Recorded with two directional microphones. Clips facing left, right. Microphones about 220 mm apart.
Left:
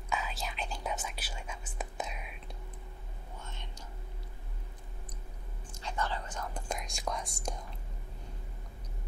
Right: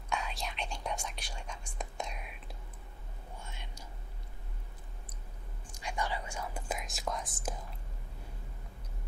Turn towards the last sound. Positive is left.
turn(degrees=-5)  # may be behind; listen again after turning